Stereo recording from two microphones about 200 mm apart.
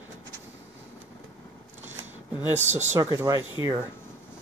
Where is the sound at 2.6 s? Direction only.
35° right (ahead or behind).